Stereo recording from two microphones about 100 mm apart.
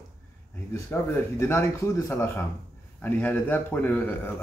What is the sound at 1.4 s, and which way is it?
A man's voice, 25° left (ahead or behind).